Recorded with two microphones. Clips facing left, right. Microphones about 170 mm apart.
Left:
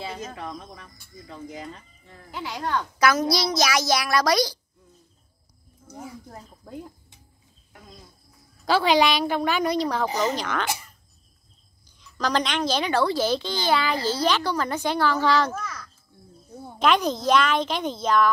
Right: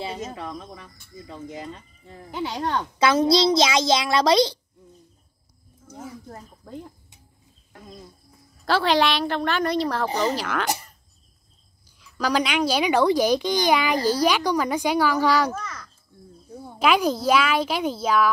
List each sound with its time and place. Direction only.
0.2 s speech: centre (ahead or behind)
2.0 s a woman's voice: 25° right (ahead or behind)
5.9 s speech: 10° left (ahead or behind)
8.6 s speech: 5° left (ahead or behind)
12.0 s a child's voice: 10° right (ahead or behind)
15.5 s a sound: 5° left (ahead or behind)
16.7 s a child's voice: 10° right (ahead or behind)